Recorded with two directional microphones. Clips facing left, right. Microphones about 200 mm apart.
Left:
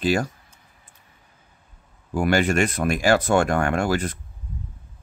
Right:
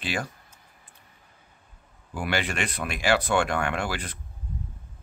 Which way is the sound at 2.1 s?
45° left (ahead or behind).